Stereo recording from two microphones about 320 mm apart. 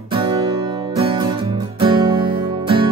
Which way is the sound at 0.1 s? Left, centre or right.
Centre.